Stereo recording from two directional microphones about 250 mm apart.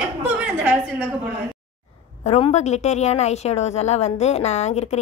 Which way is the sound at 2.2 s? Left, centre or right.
Left.